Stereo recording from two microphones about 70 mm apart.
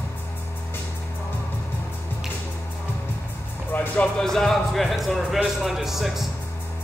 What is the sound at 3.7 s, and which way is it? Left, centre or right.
Music, left.